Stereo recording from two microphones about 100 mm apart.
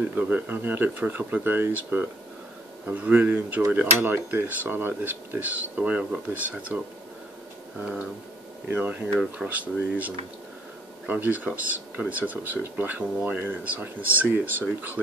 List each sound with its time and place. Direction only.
0.0 s speech: 15° right (ahead or behind)
8.6 s speech: 20° right (ahead or behind)